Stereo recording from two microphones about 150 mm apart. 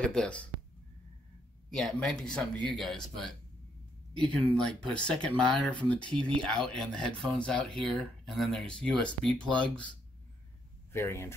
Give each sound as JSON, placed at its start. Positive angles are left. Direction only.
{"t": 0.0, "sound": "speech", "side_deg": 5}
{"t": 1.7, "sound": "speech", "side_deg": 5}
{"t": 4.6, "sound": "speech", "side_deg": 5}
{"t": 10.9, "sound": "speech", "side_deg": 15}